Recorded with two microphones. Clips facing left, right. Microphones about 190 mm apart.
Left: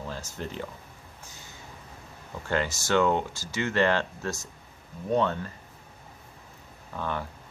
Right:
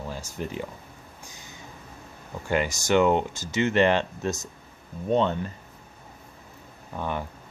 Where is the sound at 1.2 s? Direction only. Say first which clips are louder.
Right 1 dB; 15° right (ahead or behind).